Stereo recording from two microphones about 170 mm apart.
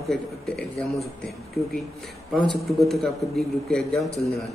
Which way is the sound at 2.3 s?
Centre (ahead or behind).